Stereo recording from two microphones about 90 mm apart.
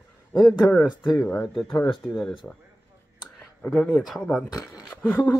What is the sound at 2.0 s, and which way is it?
Speech, centre (ahead or behind).